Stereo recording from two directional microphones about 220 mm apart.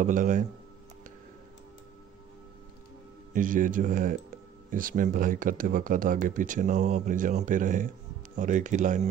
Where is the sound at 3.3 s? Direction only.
40° right (ahead or behind).